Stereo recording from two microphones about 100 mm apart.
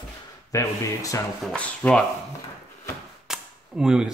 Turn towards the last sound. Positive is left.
turn(degrees=-5)  # may be behind; listen again after turning